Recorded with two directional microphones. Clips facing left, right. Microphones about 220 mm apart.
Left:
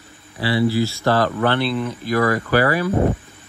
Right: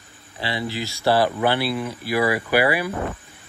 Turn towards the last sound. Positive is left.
turn(degrees=30)  # may be behind; listen again after turning